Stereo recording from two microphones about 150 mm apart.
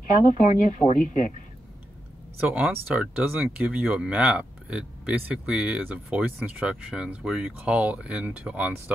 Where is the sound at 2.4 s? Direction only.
10° right (ahead or behind).